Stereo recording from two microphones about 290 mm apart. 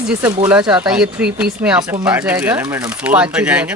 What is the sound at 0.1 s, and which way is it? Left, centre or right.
Speech, centre.